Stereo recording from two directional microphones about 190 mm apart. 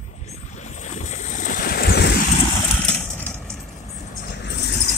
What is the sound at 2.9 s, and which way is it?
Vehicle, 5° left (ahead or behind).